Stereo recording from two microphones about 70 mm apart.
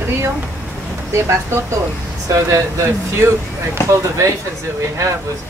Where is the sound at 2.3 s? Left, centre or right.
Right.